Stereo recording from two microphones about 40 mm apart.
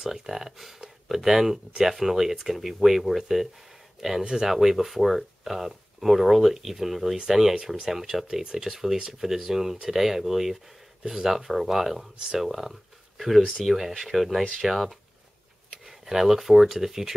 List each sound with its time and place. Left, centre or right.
0.0 s speech: centre
4.2 s speech: centre
4.5 s speech: centre
16.1 s speech: centre